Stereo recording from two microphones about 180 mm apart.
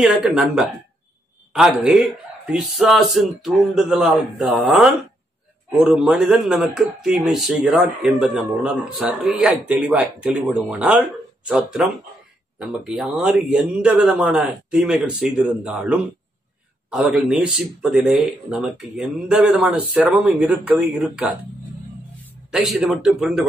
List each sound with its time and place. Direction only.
0.0 s speech: centre (ahead or behind)
5.9 s speech: 5° right (ahead or behind)
22.5 s speech: 5° right (ahead or behind)